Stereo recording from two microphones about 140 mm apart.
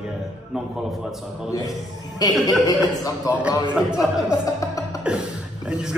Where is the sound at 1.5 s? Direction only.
25° left (ahead or behind).